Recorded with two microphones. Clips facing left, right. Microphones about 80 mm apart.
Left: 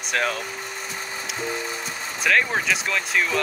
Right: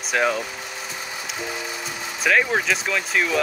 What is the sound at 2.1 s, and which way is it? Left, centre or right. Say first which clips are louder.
Speech: right 2 dB; centre.